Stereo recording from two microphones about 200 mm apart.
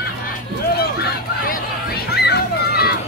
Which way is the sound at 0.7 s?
50° left (ahead or behind).